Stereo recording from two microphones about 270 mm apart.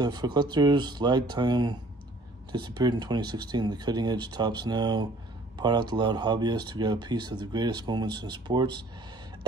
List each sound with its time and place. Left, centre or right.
0.0 s speech: centre